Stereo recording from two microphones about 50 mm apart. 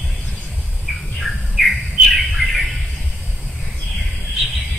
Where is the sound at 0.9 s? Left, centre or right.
Centre.